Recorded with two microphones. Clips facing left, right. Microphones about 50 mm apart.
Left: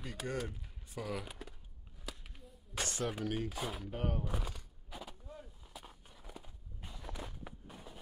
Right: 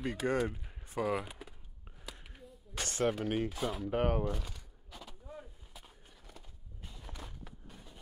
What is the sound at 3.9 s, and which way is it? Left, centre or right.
Speech, right.